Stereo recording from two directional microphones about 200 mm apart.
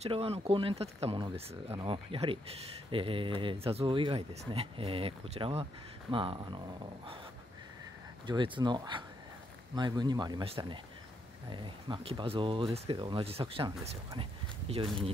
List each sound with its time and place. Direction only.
0.0 s speech: 30° right (ahead or behind)
8.3 s speech: 25° right (ahead or behind)